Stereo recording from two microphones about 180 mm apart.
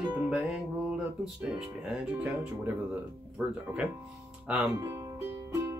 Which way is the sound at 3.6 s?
5° right (ahead or behind).